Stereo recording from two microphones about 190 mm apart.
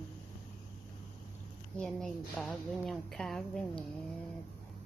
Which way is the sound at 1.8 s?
5° left (ahead or behind).